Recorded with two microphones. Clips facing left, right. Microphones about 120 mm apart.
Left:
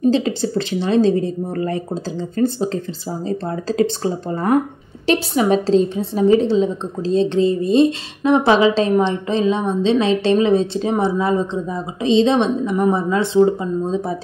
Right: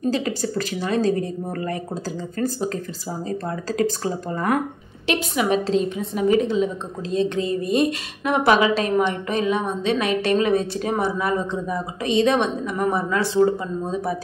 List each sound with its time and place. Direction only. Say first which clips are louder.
0.0 s a woman's voice: left 6 dB; 25° left (ahead or behind)